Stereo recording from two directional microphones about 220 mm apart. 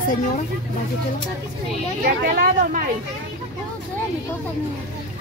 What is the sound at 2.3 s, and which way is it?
Speech, 40° right (ahead or behind).